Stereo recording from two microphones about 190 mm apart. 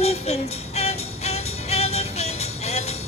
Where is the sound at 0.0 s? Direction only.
35° left (ahead or behind).